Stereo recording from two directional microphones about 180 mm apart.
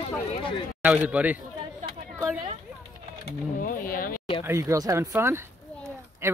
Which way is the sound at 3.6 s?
50° left (ahead or behind).